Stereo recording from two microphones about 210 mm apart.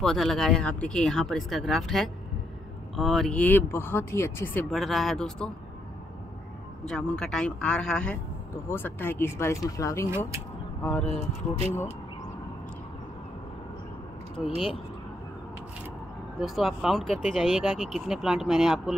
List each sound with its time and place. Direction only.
0.0 s speech: centre (ahead or behind)
6.9 s speech: 5° left (ahead or behind)
10.0 s speech: 10° right (ahead or behind)
10.8 s speech: 5° left (ahead or behind)
14.4 s speech: centre (ahead or behind)
16.3 s speech: centre (ahead or behind)